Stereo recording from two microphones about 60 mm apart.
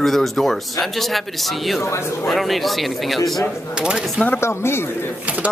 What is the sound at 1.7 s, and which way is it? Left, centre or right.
Speech, left.